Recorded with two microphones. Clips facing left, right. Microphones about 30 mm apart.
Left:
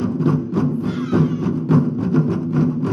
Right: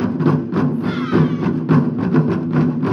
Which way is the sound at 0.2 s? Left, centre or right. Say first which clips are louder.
Right 2 dB; right.